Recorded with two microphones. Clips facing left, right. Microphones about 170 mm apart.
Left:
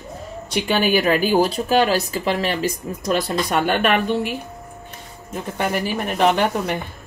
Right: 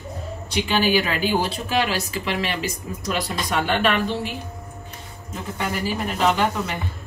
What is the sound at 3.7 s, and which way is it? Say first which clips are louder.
Speech: left 1 dB; 55° left (ahead or behind).